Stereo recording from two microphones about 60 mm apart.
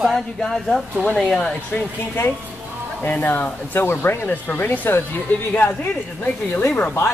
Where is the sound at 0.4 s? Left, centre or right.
Centre.